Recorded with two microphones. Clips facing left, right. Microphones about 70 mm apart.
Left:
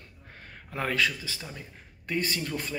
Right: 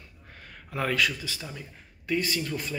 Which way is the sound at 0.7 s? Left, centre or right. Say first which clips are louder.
Right 1 dB; left.